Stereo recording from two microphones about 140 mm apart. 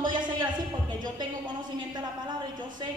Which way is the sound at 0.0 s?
70° right (ahead or behind).